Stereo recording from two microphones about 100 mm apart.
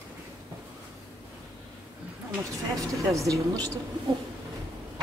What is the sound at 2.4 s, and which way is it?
Speech, 30° right (ahead or behind).